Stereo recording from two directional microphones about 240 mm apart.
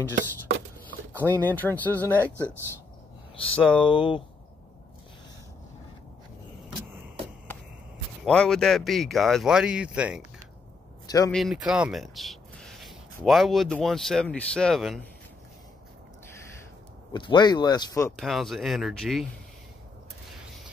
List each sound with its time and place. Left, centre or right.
1.3 s speech: centre
3.4 s speech: centre
3.9 s speech: left
8.2 s speech: centre
11.1 s speech: centre
11.3 s speech: centre
17.1 s speech: centre
18.1 s speech: centre